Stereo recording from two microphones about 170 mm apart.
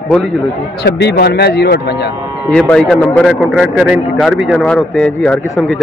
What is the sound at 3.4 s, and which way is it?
A man's voice, 5° right (ahead or behind).